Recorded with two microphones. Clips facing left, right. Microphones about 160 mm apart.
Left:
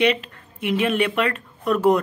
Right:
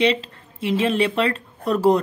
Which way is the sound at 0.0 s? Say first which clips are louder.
Even; 30° right (ahead or behind).